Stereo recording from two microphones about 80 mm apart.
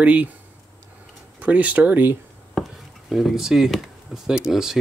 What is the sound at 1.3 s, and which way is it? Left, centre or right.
Speech, centre.